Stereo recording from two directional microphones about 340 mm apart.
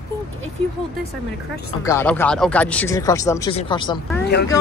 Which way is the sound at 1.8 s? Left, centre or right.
Centre.